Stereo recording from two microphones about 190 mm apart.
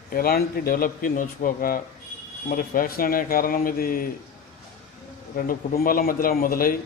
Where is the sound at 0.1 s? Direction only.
50° left (ahead or behind).